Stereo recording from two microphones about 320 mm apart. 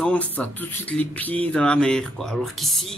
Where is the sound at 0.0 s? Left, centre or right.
Centre.